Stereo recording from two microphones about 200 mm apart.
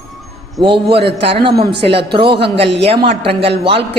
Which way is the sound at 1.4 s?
55° right (ahead or behind).